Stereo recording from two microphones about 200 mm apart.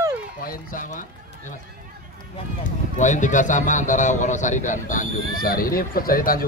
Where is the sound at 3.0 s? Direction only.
40° left (ahead or behind).